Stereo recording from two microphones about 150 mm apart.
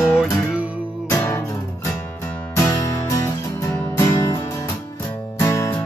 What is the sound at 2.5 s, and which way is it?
Music, 20° left (ahead or behind).